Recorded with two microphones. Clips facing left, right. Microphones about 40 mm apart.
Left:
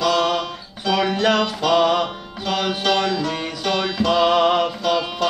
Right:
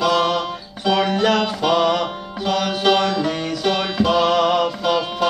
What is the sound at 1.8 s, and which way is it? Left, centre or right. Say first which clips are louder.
Music: even; centre.